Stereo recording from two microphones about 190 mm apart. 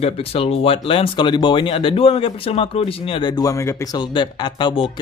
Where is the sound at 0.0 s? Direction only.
30° left (ahead or behind).